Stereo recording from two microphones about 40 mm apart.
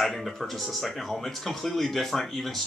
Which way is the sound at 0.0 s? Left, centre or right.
Centre.